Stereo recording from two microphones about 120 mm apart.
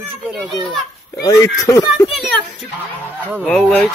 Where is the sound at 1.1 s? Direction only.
30° left (ahead or behind).